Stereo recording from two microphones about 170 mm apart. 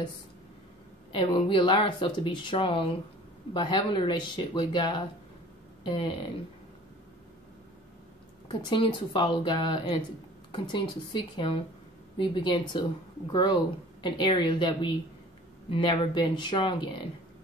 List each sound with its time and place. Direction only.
1.1 s speech: 30° left (ahead or behind)
8.5 s speech: 30° left (ahead or behind)